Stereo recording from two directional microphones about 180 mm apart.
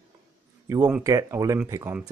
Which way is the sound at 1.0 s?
20° right (ahead or behind).